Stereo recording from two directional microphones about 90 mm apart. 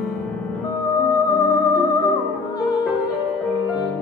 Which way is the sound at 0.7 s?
45° left (ahead or behind).